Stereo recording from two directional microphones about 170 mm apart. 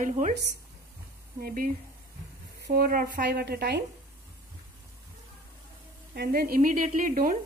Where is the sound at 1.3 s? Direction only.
60° right (ahead or behind).